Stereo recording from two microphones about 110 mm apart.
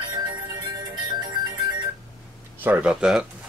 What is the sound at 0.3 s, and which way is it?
Music, 40° right (ahead or behind).